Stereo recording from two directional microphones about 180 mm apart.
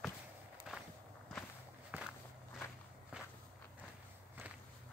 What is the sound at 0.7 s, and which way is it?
Walk, 5° right (ahead or behind).